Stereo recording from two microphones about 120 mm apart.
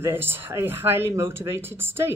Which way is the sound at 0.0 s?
20° right (ahead or behind).